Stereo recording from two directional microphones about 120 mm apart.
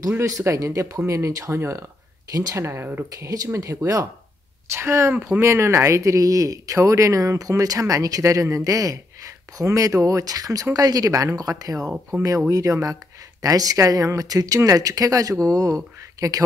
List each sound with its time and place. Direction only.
0.4 s speech: 25° right (ahead or behind)